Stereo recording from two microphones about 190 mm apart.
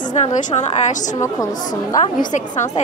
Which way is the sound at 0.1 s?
40° left (ahead or behind).